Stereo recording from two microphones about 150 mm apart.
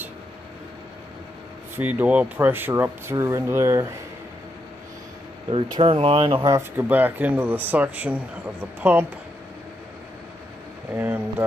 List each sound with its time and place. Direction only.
1.8 s speech: 10° right (ahead or behind)
5.5 s speech: 40° right (ahead or behind)
6.4 s speech: 15° right (ahead or behind)
11.0 s speech: 15° right (ahead or behind)